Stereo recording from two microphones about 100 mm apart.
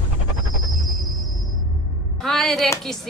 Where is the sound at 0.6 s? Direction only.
Centre (ahead or behind).